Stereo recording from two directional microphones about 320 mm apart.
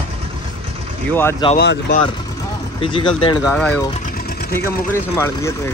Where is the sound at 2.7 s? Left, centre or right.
Centre.